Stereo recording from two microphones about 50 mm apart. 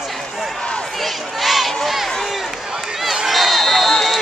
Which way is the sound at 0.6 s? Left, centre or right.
Centre.